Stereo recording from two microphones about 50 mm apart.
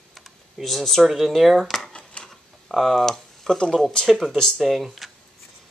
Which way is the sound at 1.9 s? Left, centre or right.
Left.